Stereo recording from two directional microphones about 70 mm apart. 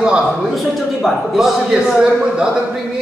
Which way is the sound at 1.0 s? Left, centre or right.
Centre.